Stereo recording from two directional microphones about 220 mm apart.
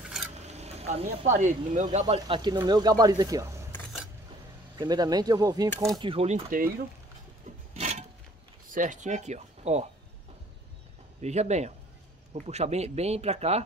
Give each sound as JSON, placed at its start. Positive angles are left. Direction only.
{"t": 0.0, "sound": "a sound", "side_deg": 0}
{"t": 0.5, "sound": "speech", "side_deg": -30}
{"t": 4.7, "sound": "speech", "side_deg": -15}
{"t": 7.7, "sound": "wood", "side_deg": -30}
{"t": 8.7, "sound": "speech", "side_deg": -35}
{"t": 11.1, "sound": "speech", "side_deg": -30}